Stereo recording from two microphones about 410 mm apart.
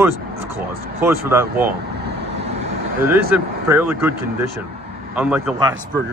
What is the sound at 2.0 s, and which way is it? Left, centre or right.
Vehicle, right.